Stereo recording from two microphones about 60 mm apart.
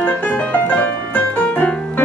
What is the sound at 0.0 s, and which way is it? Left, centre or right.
Music, left.